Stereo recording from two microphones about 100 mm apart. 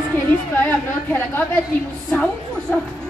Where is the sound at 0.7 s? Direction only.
20° left (ahead or behind).